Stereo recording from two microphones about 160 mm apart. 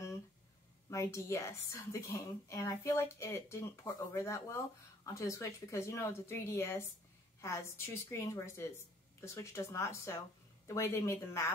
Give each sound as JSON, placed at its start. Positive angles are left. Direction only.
{"t": 0.8, "sound": "a woman's voice", "side_deg": 20}